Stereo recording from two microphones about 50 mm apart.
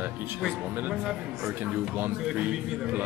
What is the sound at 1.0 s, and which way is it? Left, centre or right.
Speech, centre.